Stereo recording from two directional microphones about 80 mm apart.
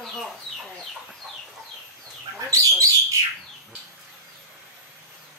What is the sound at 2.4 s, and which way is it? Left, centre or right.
Bird, right.